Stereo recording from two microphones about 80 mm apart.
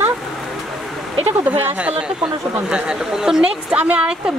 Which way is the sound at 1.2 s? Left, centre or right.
Right.